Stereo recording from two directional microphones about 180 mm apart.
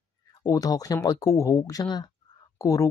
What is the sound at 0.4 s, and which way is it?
Speech, 20° left (ahead or behind).